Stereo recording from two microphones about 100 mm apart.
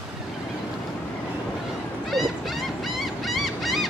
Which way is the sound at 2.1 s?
Centre (ahead or behind).